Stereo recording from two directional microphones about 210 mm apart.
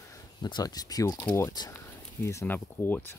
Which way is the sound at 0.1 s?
20° left (ahead or behind).